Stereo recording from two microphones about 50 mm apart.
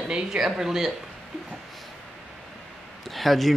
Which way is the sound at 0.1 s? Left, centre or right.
Centre.